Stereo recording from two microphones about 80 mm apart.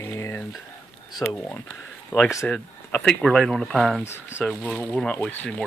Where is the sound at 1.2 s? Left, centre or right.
Left.